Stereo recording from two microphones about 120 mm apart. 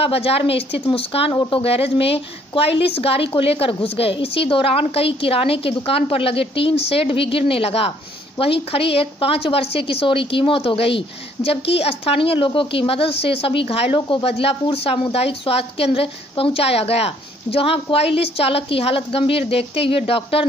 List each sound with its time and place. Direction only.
0.0 s a woman's voice: 55° left (ahead or behind)